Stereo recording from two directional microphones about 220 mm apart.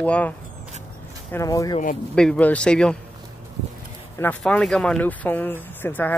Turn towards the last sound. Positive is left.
turn(degrees=10)  # may be behind; listen again after turning